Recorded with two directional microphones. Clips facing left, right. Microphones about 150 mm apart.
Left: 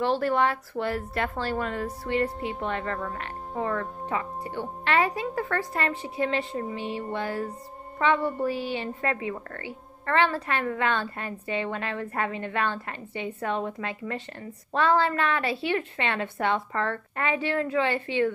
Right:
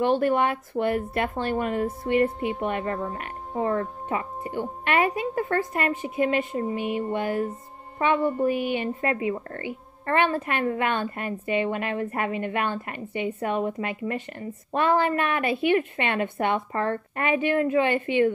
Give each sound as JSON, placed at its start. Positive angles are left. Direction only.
{"t": 0.0, "sound": "a woman's voice", "side_deg": -20}